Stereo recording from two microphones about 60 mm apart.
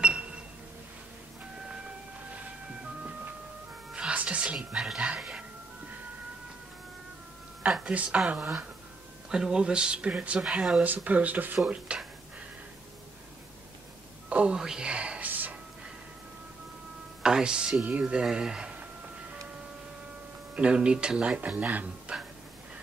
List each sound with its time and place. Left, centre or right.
0.0 s a sound: centre
2.3 s vehicle: right
3.9 s music: centre
4.7 s speech: centre
7.9 s speech: right
8.4 s speech: centre
10.4 s speech: centre
11.1 s speech: right
14.3 s a sound: centre
17.2 s speech: centre
20.5 s speech: centre